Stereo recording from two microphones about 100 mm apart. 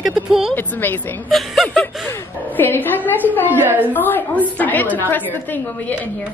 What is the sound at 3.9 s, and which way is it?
A woman's voice, 20° left (ahead or behind).